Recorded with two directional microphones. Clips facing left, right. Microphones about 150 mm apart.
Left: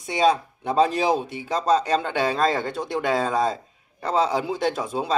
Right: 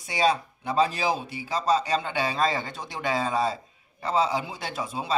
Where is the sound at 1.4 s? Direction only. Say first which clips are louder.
Left 1 dB; 5° right (ahead or behind).